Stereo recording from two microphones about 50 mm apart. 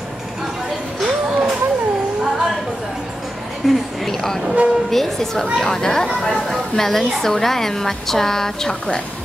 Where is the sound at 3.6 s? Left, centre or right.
Centre.